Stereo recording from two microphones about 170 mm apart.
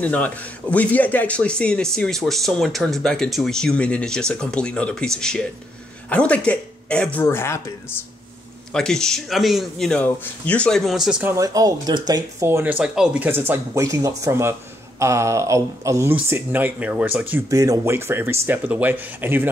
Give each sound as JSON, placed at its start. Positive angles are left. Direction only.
{"t": 0.0, "sound": "speech", "side_deg": 10}
{"t": 8.7, "sound": "speech", "side_deg": 5}
{"t": 11.3, "sound": "speech", "side_deg": -20}
{"t": 17.5, "sound": "speech", "side_deg": -20}